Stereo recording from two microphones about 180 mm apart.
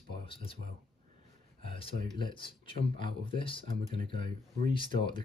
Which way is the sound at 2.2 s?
25° left (ahead or behind).